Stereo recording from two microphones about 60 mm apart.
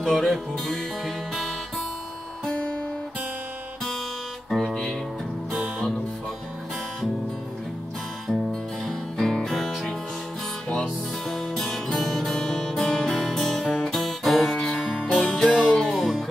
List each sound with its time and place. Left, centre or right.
0.0 s music: centre
2.4 s music: centre
4.5 s music: centre
8.8 s music: centre